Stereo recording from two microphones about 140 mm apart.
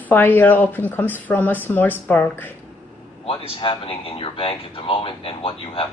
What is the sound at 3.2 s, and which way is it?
Speech, 40° left (ahead or behind).